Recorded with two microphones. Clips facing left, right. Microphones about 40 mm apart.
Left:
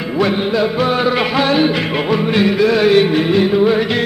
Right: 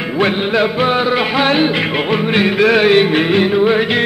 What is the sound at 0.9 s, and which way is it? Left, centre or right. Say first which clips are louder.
Music: even; centre.